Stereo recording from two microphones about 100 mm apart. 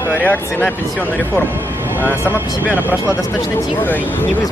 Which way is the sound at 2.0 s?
20° left (ahead or behind).